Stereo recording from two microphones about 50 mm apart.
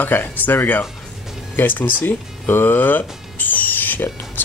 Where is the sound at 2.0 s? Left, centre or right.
Left.